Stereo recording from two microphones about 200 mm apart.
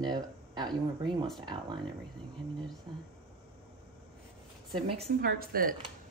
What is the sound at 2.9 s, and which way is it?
Speech, 20° right (ahead or behind).